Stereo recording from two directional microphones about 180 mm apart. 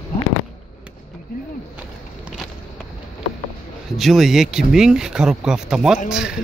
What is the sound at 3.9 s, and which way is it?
Speech, centre (ahead or behind).